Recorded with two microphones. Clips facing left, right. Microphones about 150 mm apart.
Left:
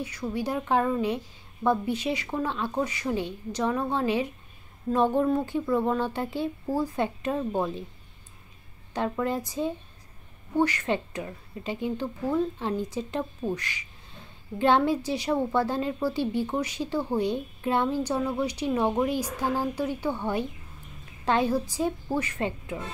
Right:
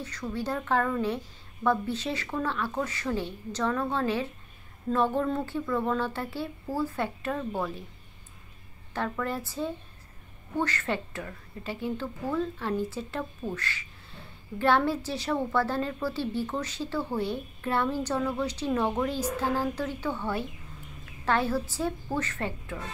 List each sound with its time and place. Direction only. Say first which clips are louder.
0.0 s a woman's voice: left 3 dB; 10° left (ahead or behind)
8.9 s a woman's voice: left 3 dB; 20° left (ahead or behind)